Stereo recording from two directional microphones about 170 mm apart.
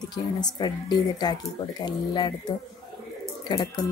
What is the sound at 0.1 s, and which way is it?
Speech, 25° left (ahead or behind).